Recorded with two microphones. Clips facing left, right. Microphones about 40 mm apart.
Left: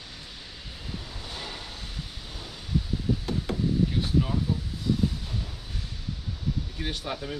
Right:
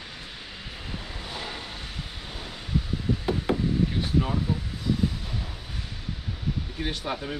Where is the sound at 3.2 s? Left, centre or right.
Right.